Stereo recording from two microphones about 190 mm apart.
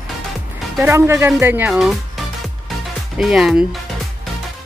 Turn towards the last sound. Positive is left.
turn(degrees=0)  # may be behind; listen again after turning